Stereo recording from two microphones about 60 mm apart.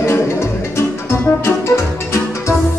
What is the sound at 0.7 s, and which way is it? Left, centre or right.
Music, left.